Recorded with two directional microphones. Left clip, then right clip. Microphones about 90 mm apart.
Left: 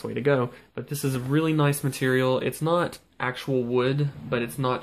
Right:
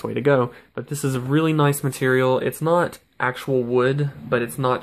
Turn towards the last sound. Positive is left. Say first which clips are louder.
# right 5 dB
turn(degrees=-40)  # may be behind; listen again after turning